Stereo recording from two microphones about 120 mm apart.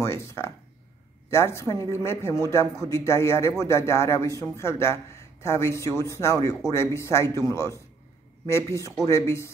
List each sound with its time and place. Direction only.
0.0 s speech: 25° left (ahead or behind)